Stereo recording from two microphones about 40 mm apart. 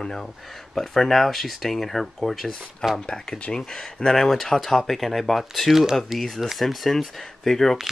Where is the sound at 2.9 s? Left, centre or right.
Centre.